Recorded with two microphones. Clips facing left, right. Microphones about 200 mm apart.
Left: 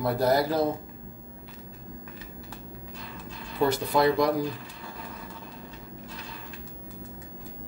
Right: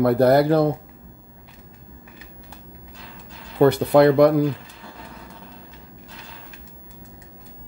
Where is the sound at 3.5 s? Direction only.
60° right (ahead or behind).